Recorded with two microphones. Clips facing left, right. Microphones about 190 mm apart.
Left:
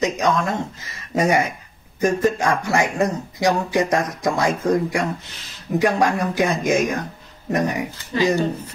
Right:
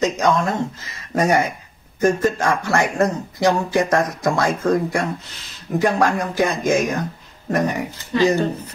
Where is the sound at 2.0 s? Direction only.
15° left (ahead or behind).